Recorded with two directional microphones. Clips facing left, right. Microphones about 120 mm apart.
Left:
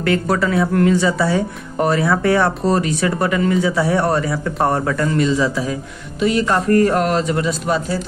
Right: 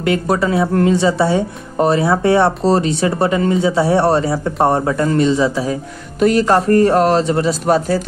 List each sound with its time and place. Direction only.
0.0 s speech: 20° right (ahead or behind)
6.1 s a man's voice: 45° right (ahead or behind)